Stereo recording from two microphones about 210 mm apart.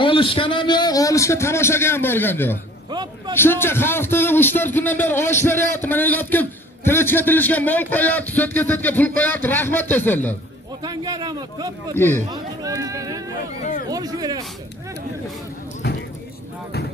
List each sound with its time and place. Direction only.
0.0 s a man's voice: 25° left (ahead or behind)
2.9 s vehicle: 20° right (ahead or behind)
3.3 s a man's voice: 10° left (ahead or behind)
10.8 s speech: 20° right (ahead or behind)